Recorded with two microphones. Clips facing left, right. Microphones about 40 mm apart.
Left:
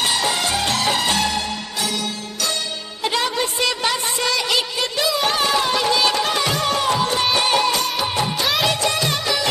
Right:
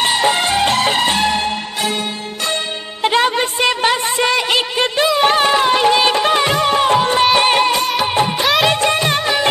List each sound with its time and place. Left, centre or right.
0.0 s music: right
3.0 s music: right
8.0 s music of bollywood: right
8.6 s music: right